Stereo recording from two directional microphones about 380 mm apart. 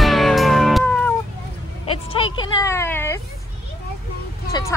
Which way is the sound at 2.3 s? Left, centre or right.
Centre.